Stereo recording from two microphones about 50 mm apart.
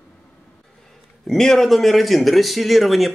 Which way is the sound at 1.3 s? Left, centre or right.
Centre.